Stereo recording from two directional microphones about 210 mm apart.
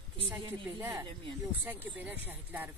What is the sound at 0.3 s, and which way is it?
A man's voice, 10° right (ahead or behind).